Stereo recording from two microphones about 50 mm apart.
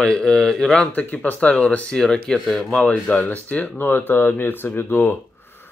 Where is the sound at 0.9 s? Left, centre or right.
Left.